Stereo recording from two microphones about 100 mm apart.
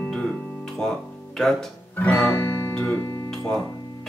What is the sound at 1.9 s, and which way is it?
Guitar, 15° left (ahead or behind).